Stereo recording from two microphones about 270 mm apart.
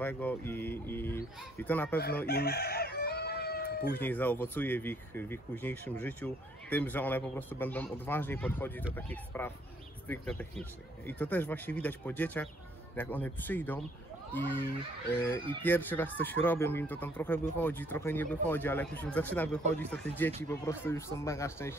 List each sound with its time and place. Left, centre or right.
0.0 s speech: centre
2.2 s chicken: left
4.0 s speech: centre